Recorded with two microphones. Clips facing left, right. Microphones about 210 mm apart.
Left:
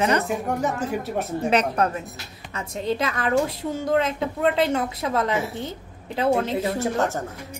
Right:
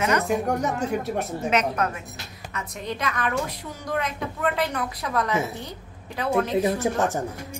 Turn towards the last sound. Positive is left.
turn(degrees=-15)  # may be behind; listen again after turning